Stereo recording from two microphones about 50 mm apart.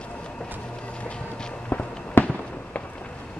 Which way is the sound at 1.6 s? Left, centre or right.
Left.